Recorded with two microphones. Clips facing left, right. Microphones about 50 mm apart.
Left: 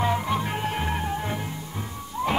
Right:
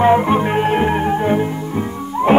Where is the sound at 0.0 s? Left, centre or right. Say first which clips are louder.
Right 12 dB; right.